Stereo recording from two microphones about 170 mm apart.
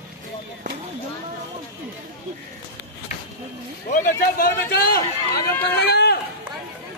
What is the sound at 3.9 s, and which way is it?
A man's voice, 60° left (ahead or behind).